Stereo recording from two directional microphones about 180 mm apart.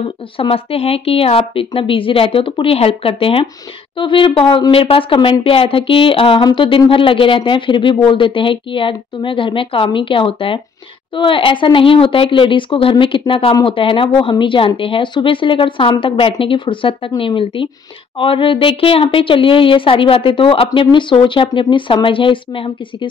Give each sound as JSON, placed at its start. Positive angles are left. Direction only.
{"t": 0.4, "sound": "a woman's voice", "side_deg": 30}